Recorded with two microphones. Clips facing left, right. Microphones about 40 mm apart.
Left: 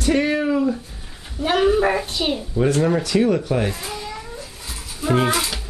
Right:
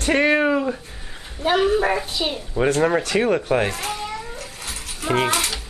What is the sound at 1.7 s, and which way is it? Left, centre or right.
Speech, centre.